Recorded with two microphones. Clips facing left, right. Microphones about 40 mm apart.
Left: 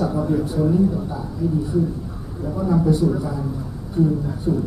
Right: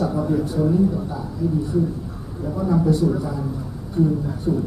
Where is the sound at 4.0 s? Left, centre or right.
Left.